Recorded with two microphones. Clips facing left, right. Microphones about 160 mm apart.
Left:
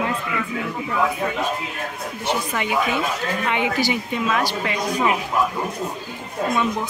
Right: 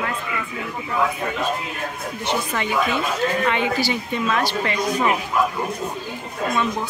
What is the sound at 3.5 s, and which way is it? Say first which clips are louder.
Speech: even; 15° left (ahead or behind).